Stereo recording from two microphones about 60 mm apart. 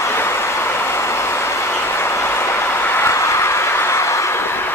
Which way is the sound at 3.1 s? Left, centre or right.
Left.